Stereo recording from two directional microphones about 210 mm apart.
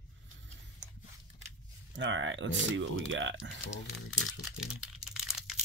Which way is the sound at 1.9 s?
60° right (ahead or behind).